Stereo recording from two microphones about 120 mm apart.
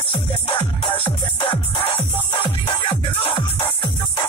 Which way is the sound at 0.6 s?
50° left (ahead or behind).